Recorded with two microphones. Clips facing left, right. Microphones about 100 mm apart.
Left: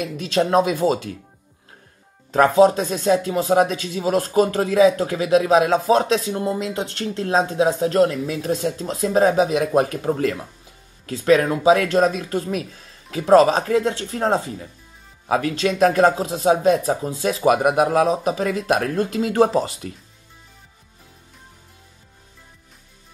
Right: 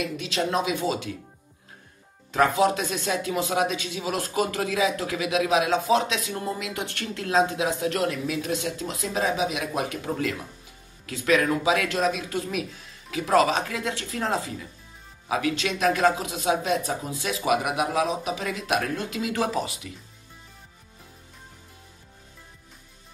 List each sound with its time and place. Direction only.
0.0 s speech: 40° left (ahead or behind)
2.3 s speech: 35° left (ahead or behind)